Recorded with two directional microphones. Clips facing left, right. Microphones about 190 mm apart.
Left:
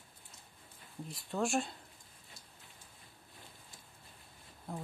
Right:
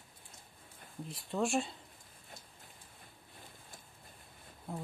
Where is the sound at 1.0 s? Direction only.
Centre (ahead or behind).